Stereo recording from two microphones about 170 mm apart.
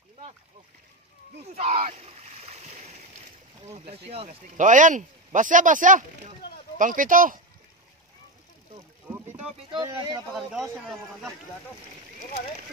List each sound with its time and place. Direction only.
1.4 s splash: 40° right (ahead or behind)
3.6 s speech: 35° right (ahead or behind); by 7.3 s 50° right (ahead or behind)
9.7 s speech: 25° right (ahead or behind)
10.3 s speech: centre (ahead or behind)